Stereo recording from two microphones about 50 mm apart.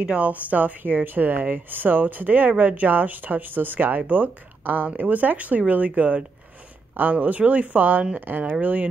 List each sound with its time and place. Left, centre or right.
0.0 s speech: right